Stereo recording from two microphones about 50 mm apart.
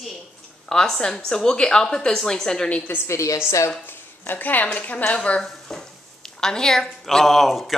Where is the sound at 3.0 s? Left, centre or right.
Left.